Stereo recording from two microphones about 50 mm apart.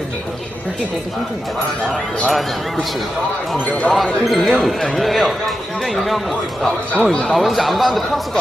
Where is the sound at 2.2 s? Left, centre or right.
Centre.